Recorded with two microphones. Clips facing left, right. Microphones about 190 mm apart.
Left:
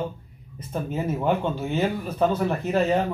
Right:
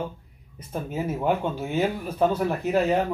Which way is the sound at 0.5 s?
10° right (ahead or behind).